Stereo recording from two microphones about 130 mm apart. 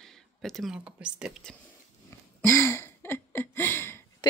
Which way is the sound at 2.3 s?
20° left (ahead or behind).